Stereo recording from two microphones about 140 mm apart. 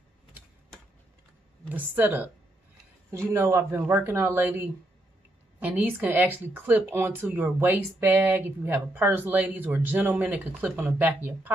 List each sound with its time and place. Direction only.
1.7 s speech: 10° right (ahead or behind)